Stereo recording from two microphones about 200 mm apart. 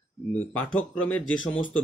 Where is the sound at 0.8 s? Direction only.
5° left (ahead or behind).